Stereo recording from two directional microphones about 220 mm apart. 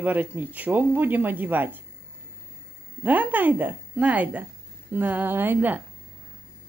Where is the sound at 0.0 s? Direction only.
5° right (ahead or behind).